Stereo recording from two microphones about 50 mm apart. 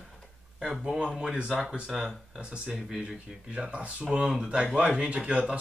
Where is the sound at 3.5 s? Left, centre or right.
Right.